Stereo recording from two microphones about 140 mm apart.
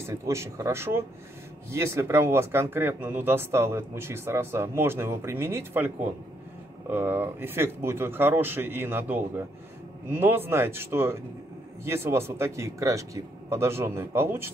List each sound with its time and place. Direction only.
0.0 s speech: 20° right (ahead or behind)